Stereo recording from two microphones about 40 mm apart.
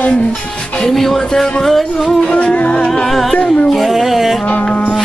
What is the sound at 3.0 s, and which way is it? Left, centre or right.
Music, centre.